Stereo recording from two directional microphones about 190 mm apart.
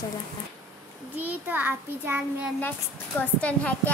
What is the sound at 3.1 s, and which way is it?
Speech, 5° left (ahead or behind).